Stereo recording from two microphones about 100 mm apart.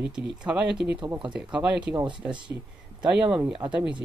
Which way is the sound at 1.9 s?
50° right (ahead or behind).